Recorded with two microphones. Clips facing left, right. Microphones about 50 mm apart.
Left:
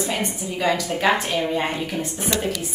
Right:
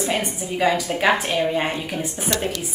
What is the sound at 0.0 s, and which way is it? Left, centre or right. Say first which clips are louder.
A woman's voice: right 1 dB; centre.